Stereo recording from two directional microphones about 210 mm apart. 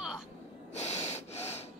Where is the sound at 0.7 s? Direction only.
30° left (ahead or behind).